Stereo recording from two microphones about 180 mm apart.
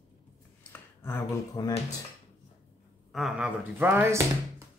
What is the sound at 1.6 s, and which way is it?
Speech, 25° left (ahead or behind).